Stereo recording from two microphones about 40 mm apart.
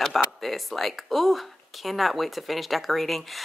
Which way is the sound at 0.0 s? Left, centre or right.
Centre.